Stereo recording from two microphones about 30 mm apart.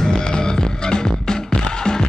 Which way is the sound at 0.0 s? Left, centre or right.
Left.